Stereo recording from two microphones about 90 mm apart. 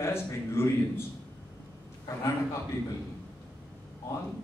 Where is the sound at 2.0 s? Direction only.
35° left (ahead or behind).